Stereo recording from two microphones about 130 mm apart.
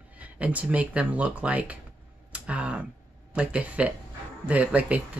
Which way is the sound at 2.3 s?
10° right (ahead or behind).